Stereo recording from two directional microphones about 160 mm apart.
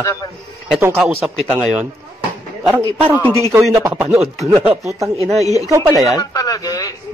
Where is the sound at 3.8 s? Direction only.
15° right (ahead or behind).